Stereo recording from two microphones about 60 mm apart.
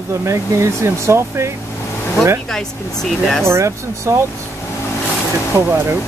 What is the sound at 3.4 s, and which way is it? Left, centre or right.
Speech, right.